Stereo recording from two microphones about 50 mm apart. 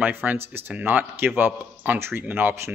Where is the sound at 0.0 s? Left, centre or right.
Right.